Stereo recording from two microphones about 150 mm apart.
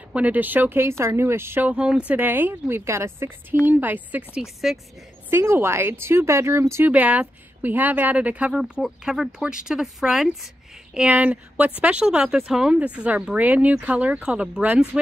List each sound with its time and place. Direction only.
0.1 s speech: 10° right (ahead or behind)
5.3 s speech: 15° right (ahead or behind)